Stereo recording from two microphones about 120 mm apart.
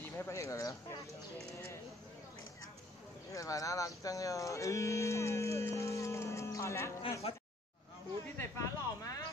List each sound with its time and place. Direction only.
0.0 s speech: 20° left (ahead or behind)
3.3 s speech: 30° left (ahead or behind)
7.2 s speech: 55° left (ahead or behind)
8.4 s a sound: 30° left (ahead or behind)